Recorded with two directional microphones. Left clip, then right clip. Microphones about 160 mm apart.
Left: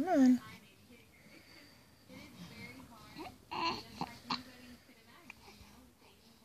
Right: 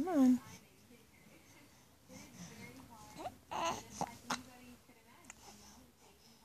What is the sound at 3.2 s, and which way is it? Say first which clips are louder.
Baby cry: left 1 dB; 20° right (ahead or behind).